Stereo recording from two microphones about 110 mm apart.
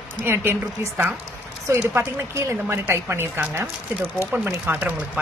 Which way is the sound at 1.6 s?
25° right (ahead or behind).